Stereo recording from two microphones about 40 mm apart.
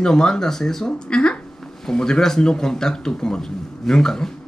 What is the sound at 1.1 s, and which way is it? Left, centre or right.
Music, left.